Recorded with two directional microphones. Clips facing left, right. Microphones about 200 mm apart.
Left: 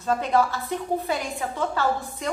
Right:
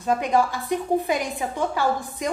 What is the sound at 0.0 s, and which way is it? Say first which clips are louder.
A woman's voice: right 1 dB; 15° right (ahead or behind).